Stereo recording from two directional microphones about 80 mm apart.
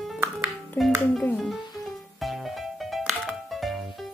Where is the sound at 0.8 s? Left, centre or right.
Left.